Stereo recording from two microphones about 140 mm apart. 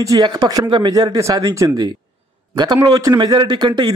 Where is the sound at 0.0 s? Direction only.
25° right (ahead or behind).